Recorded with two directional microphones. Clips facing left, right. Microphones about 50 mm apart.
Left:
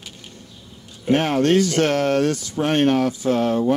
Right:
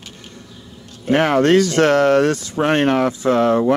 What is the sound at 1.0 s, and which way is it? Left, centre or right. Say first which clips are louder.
Speech: right 4 dB; right.